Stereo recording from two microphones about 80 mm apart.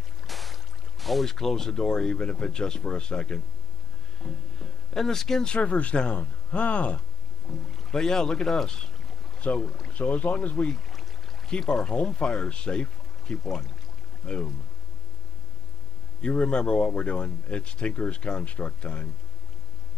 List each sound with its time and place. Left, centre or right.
0.3 s speech: centre
4.2 s music: centre
4.9 s speech: centre
7.5 s music: centre
7.9 s speech: centre
10.7 s a sound: centre
11.5 s speech: centre
16.2 s speech: centre